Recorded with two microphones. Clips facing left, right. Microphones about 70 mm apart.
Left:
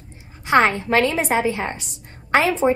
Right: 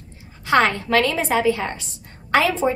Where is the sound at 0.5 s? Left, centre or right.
Left.